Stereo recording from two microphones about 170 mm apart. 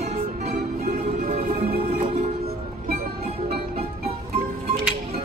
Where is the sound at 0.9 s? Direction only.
55° right (ahead or behind).